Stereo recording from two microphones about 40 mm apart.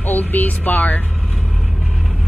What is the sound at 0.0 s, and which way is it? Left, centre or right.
Speech, left.